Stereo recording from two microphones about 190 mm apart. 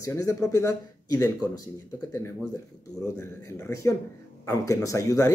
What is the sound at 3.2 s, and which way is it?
Speech, 15° left (ahead or behind).